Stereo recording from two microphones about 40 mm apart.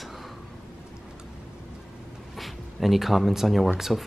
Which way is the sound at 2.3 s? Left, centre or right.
Centre.